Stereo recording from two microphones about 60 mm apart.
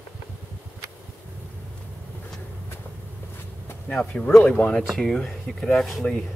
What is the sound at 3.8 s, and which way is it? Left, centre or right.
Speech, centre.